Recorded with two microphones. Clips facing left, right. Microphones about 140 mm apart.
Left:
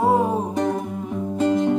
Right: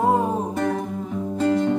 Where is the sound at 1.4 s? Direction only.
15° left (ahead or behind).